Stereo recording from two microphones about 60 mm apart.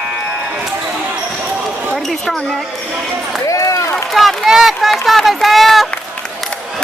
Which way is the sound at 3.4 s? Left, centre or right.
Left.